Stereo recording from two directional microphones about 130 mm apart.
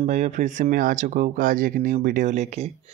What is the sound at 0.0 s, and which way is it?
Speech, 65° right (ahead or behind).